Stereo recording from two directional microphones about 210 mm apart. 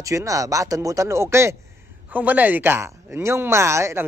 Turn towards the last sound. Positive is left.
turn(degrees=-15)  # may be behind; listen again after turning